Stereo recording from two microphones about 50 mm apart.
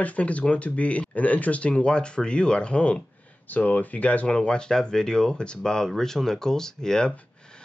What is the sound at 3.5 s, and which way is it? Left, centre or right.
Speech, left.